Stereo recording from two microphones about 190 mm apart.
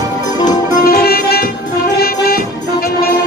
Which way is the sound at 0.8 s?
50° left (ahead or behind).